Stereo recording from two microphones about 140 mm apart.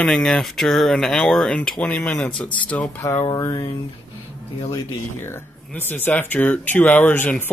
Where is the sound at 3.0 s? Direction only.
25° left (ahead or behind).